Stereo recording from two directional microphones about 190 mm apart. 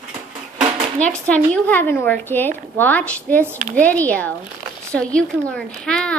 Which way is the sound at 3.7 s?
5° left (ahead or behind).